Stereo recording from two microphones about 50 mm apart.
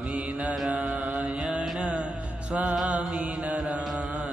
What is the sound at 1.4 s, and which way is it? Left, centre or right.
Music, centre.